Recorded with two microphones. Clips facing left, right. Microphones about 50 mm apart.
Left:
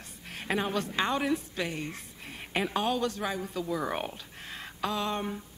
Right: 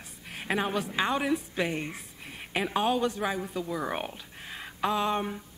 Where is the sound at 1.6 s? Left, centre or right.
Right.